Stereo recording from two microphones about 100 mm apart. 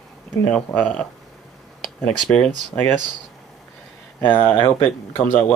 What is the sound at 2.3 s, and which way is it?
Speech, 10° left (ahead or behind).